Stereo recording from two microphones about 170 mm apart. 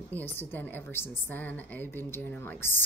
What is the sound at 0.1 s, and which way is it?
Speech, 10° left (ahead or behind).